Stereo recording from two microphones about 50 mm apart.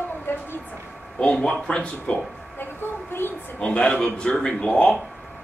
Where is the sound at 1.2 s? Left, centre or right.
Centre.